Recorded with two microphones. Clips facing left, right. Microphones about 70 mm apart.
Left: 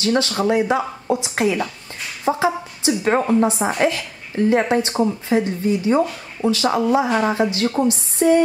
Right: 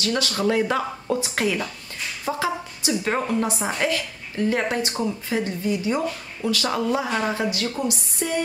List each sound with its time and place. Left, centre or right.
0.0 s a woman's voice: left
7.5 s speech: left